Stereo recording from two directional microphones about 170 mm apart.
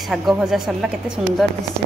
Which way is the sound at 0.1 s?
5° right (ahead or behind).